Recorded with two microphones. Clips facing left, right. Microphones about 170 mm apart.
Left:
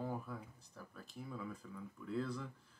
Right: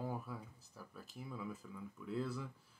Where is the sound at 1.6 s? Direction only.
Centre (ahead or behind).